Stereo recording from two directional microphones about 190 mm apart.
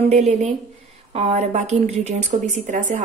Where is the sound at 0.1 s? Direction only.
35° right (ahead or behind).